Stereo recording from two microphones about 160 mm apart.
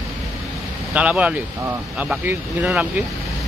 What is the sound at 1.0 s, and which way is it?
Speech, 10° right (ahead or behind).